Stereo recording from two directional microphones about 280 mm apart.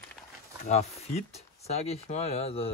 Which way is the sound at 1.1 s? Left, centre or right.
Left.